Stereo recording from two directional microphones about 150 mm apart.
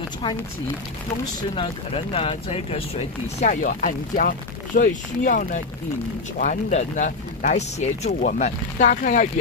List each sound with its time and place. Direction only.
1.5 s speech: 40° left (ahead or behind)
8.2 s speech: 60° left (ahead or behind)